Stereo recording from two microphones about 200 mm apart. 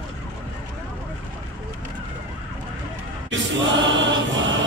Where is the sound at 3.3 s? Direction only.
65° right (ahead or behind).